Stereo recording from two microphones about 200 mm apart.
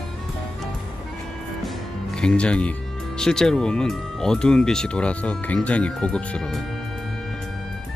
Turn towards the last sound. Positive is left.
turn(degrees=5)  # may be behind; listen again after turning